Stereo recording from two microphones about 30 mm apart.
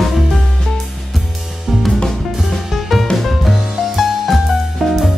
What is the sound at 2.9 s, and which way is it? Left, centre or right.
Music, centre.